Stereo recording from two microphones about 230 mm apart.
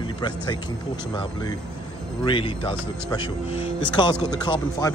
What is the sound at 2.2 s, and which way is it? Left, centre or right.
Speech, left.